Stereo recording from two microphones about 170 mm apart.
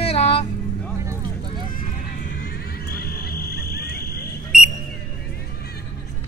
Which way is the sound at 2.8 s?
65° left (ahead or behind).